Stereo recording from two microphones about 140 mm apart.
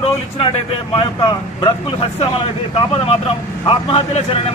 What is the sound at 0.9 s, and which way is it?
Speech, 35° left (ahead or behind).